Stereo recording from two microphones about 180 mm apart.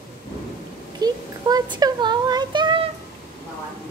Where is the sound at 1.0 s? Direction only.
20° right (ahead or behind).